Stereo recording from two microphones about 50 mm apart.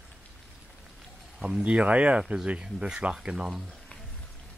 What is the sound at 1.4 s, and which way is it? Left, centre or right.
Speech, centre.